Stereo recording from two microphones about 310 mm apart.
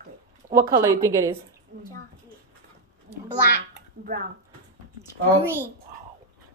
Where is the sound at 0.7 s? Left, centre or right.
Centre.